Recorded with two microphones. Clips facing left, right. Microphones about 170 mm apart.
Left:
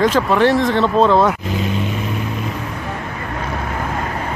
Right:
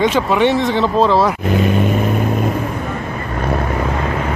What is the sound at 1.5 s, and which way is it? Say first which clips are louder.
Speech: right 6 dB; 55° right (ahead or behind).